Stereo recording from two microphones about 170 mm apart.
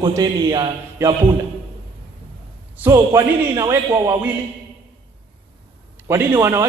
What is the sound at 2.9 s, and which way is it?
Speech, 20° right (ahead or behind).